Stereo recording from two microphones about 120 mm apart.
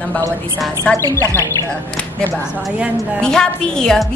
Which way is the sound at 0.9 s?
10° left (ahead or behind).